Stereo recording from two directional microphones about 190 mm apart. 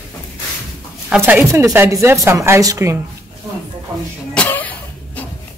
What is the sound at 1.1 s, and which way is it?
Speech, 5° right (ahead or behind).